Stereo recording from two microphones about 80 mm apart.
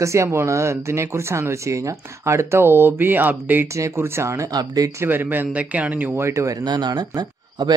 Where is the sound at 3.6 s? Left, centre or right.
Right.